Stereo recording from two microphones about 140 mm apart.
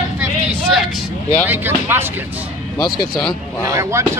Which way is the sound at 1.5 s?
15° right (ahead or behind).